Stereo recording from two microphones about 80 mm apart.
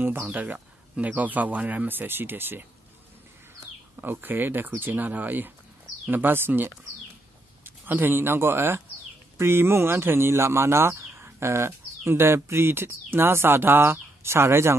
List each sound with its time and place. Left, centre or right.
0.0 s speech: right
4.0 s speech: right